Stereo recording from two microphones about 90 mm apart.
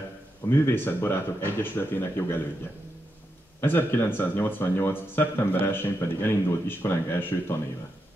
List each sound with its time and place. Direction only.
0.5 s speech: 25° left (ahead or behind)
3.6 s speech: 25° left (ahead or behind)